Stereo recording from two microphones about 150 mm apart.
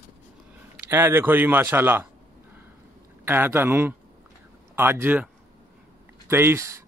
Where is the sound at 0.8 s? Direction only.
15° right (ahead or behind).